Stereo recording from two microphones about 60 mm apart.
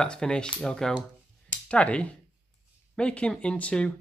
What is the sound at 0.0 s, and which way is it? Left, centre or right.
Speech, centre.